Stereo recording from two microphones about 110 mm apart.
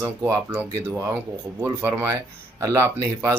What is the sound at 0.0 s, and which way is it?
Speech, 20° right (ahead or behind).